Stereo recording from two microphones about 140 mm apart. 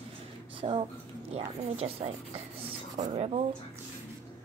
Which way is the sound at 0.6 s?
40° right (ahead or behind).